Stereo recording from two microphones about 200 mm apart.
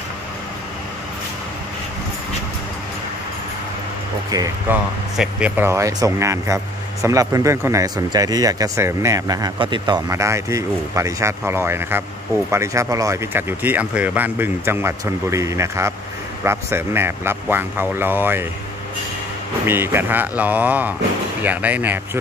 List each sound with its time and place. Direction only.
4.3 s speech: 20° right (ahead or behind)
5.1 s speech: 5° right (ahead or behind)
19.6 s speech: 10° right (ahead or behind)